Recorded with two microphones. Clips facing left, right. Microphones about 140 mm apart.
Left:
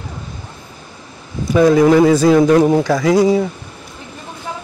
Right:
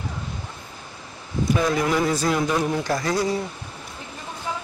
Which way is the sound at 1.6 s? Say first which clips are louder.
Left 14 dB; 70° left (ahead or behind).